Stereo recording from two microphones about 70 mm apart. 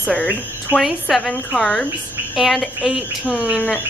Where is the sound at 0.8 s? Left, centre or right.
Centre.